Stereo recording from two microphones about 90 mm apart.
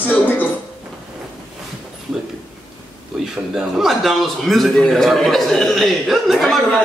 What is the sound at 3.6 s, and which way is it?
Speech, 5° right (ahead or behind).